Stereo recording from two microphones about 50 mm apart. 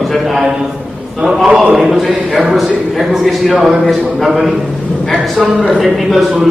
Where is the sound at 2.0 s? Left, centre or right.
Centre.